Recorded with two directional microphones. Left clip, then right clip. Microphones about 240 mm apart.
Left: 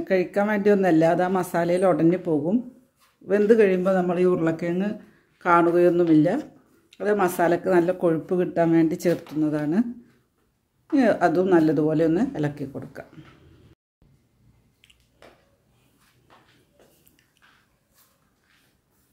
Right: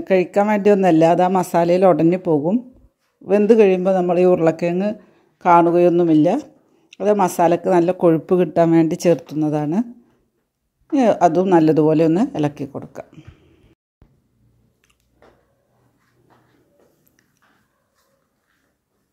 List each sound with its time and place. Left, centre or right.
0.0 s speech: right
10.9 s speech: right